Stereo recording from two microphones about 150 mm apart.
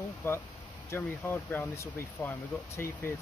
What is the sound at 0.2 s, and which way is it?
Speech, 15° left (ahead or behind).